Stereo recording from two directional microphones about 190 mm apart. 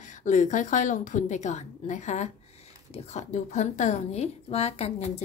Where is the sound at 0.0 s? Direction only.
40° left (ahead or behind).